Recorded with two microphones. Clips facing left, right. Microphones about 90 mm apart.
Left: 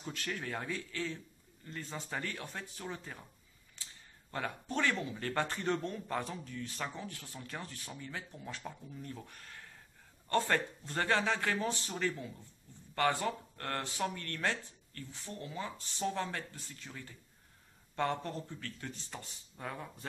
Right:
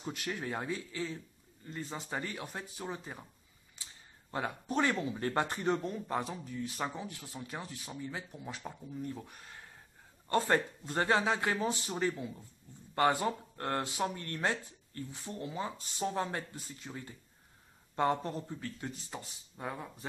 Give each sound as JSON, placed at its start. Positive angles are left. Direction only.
{"t": 0.0, "sound": "speech", "side_deg": -15}
{"t": 1.7, "sound": "speech", "side_deg": -10}
{"t": 4.3, "sound": "speech", "side_deg": -15}